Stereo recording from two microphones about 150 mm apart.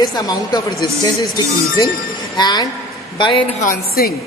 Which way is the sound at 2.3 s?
30° left (ahead or behind).